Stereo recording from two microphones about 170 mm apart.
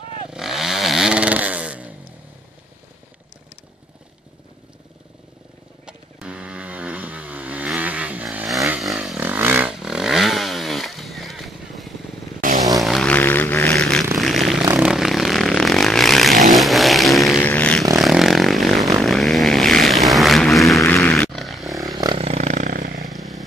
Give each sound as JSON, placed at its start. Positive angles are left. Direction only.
{"t": 0.3, "sound": "chainsaw", "side_deg": 0}
{"t": 5.9, "sound": "vehicle", "side_deg": -5}
{"t": 9.2, "sound": "chainsaw", "side_deg": -15}
{"t": 12.4, "sound": "vehicle", "side_deg": -55}
{"t": 12.8, "sound": "music", "side_deg": 0}
{"t": 14.8, "sound": "vehicle", "side_deg": -5}
{"t": 20.8, "sound": "a sound", "side_deg": 10}
{"t": 21.7, "sound": "a sound", "side_deg": -20}
{"t": 23.0, "sound": "vehicle", "side_deg": 0}